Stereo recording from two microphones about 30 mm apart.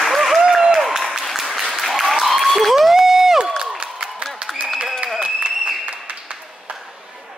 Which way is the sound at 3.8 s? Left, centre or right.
Right.